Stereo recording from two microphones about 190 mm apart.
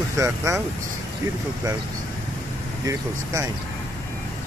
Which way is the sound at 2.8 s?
15° right (ahead or behind).